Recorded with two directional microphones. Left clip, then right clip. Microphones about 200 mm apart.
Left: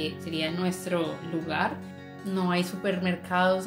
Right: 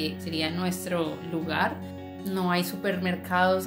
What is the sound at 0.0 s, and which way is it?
A woman's voice, 10° right (ahead or behind).